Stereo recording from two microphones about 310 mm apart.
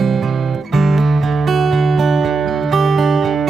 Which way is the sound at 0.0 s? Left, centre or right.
Centre.